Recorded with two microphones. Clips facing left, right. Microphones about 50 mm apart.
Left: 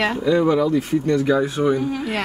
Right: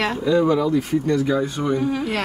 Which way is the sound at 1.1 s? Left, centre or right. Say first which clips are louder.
Left 3 dB; centre.